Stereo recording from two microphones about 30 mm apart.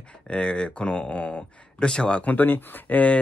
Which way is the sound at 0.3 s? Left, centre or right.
Left.